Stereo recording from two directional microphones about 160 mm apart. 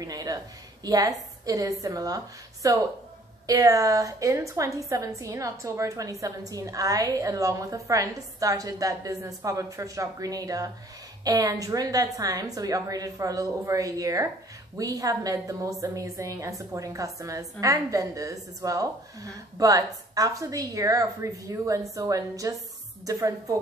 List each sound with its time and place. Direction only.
0.0 s a woman's voice: 25° right (ahead or behind)